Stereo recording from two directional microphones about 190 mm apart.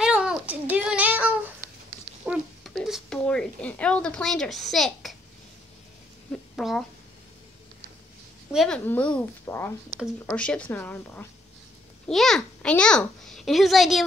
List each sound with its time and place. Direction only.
0.0 s child singing: 5° right (ahead or behind)
2.2 s a sound: centre (ahead or behind)
6.5 s speech: centre (ahead or behind)
8.5 s a woman's voice: centre (ahead or behind)